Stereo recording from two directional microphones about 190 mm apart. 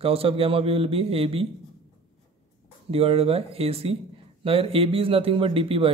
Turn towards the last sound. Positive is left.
turn(degrees=-30)  # may be behind; listen again after turning